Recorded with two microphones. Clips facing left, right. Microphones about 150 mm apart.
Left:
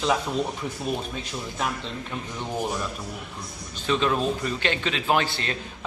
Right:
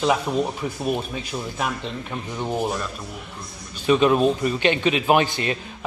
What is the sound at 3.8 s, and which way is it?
A man's voice, 15° right (ahead or behind).